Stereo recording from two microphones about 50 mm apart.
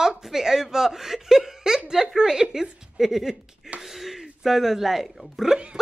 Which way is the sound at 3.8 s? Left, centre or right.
Centre.